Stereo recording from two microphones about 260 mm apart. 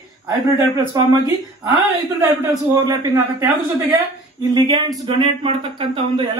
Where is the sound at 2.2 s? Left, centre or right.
Centre.